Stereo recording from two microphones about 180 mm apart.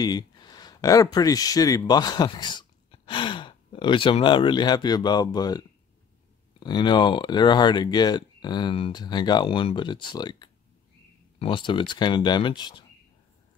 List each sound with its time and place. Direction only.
0.0 s speech: 25° left (ahead or behind)